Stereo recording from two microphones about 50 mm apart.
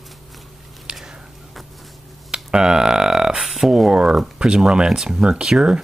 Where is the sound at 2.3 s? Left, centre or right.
Centre.